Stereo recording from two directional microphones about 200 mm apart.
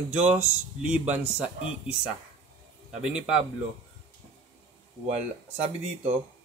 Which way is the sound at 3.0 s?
5° right (ahead or behind).